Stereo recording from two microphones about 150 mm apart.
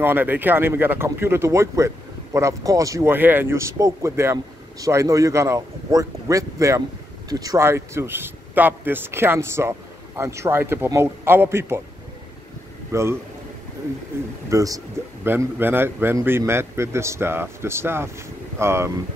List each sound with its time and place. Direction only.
0.0 s a man's voice: 15° right (ahead or behind)
12.9 s a man's voice: 20° right (ahead or behind)
14.5 s a man's voice: 25° right (ahead or behind)